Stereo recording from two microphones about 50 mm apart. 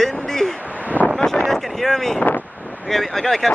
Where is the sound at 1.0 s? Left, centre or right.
Right.